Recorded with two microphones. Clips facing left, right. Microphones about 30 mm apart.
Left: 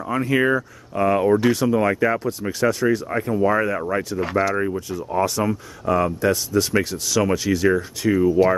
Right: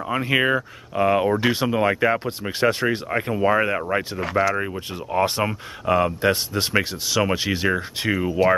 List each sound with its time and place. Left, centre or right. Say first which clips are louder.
0.0 s speech: left 1 dB; right
4.2 s speech: even; centre
4.7 s speech: even; right